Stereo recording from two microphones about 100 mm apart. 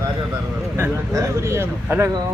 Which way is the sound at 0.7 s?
30° right (ahead or behind).